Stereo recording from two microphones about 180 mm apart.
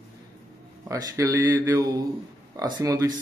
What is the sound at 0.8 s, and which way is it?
Speech, 20° right (ahead or behind).